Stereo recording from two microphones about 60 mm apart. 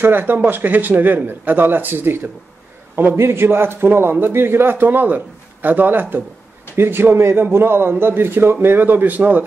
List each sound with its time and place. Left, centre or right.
0.0 s a man's voice: right